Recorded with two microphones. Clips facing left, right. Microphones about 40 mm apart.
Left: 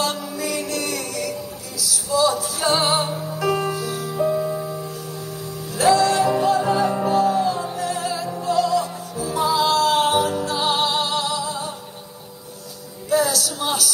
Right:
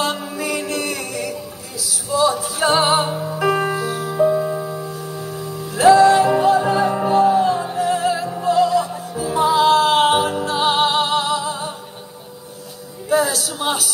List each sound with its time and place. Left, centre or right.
0.0 s music: right
4.3 s music: centre
4.7 s music: right
13.1 s music: right